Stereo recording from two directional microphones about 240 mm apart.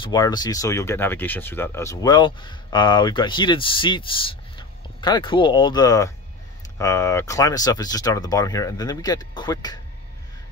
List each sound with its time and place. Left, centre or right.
0.0 s speech: centre